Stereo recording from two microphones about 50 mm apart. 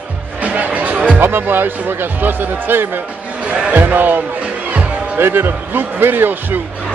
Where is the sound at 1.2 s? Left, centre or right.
Right.